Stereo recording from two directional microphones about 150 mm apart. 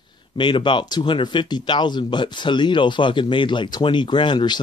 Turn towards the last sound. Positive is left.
turn(degrees=30)  # may be behind; listen again after turning